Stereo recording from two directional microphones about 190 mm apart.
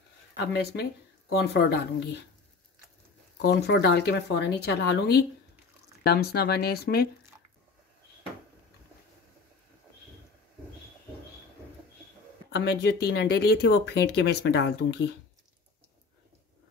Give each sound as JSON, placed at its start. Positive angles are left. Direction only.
{"t": 0.4, "sound": "speech", "side_deg": 60}
{"t": 3.3, "sound": "speech", "side_deg": 60}
{"t": 12.5, "sound": "speech", "side_deg": 60}